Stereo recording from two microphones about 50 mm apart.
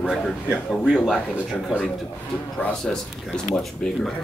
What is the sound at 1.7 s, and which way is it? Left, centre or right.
Speech, right.